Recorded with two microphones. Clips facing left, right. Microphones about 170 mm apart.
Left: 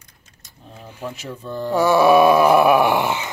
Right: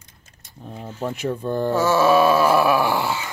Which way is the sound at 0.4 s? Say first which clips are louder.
Right 6 dB; 55° right (ahead or behind).